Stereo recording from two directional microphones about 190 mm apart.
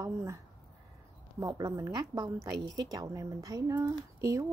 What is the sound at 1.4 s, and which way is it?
A woman's voice, 20° right (ahead or behind).